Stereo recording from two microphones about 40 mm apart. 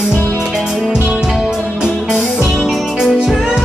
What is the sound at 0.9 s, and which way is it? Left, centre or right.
Music, centre.